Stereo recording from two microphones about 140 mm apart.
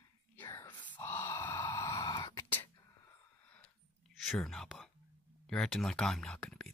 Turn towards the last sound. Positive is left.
turn(degrees=5)  # may be behind; listen again after turning